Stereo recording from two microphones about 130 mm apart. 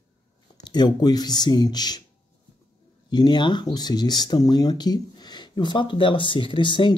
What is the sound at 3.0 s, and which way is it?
Speech, 35° left (ahead or behind).